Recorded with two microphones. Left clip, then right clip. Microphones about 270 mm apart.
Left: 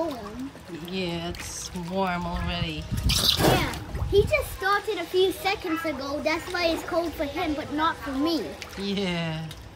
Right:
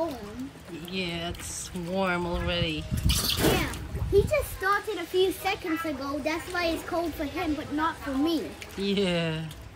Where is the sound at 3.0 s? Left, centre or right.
Left.